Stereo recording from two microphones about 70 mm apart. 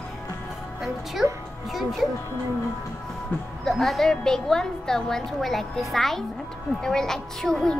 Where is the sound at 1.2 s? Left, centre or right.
Centre.